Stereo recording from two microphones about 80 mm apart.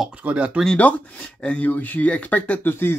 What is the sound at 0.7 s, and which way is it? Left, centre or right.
Speech, centre.